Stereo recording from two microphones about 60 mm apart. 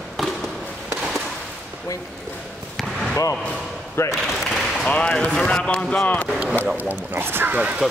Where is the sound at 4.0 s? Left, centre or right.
Left.